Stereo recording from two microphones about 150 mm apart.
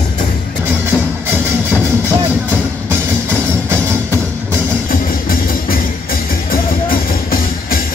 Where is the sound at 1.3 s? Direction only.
15° right (ahead or behind).